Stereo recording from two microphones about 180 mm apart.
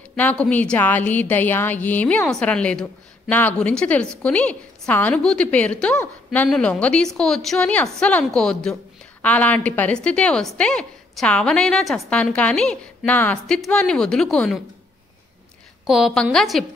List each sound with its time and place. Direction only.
0.1 s a woman's voice: 10° left (ahead or behind)
15.9 s a woman's voice: centre (ahead or behind)